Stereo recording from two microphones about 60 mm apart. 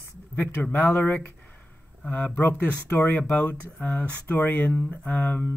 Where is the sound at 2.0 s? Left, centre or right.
Left.